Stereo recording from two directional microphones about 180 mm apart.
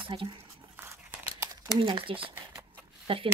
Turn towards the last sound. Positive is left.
turn(degrees=-30)  # may be behind; listen again after turning